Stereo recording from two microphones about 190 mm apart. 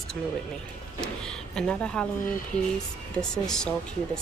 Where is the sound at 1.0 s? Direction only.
5° left (ahead or behind).